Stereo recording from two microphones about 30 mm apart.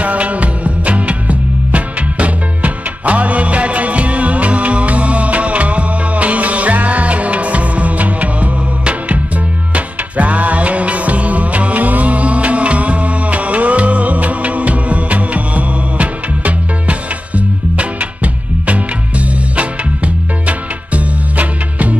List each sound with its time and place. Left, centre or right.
0.0 s music: right
9.8 s music: right